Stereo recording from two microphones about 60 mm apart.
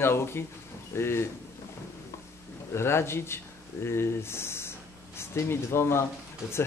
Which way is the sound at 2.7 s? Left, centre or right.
Left.